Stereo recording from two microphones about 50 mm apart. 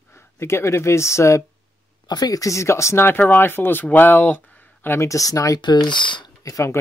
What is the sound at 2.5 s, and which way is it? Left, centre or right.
Speech, left.